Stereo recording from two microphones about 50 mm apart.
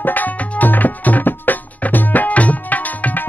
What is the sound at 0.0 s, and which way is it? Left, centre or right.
Music, left.